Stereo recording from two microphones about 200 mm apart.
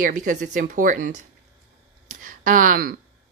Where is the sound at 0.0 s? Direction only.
40° right (ahead or behind).